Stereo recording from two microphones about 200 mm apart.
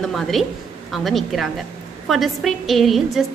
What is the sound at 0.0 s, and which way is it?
A woman's voice, centre (ahead or behind).